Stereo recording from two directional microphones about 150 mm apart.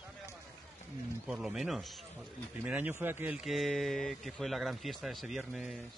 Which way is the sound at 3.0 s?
10° right (ahead or behind).